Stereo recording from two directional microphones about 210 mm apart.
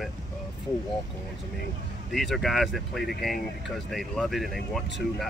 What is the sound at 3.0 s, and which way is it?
Speech, 50° left (ahead or behind).